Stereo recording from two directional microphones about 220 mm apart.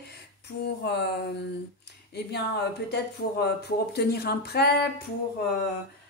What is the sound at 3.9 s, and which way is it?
Speech, 45° left (ahead or behind).